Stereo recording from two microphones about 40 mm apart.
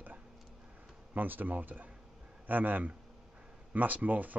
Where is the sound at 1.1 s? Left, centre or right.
Right.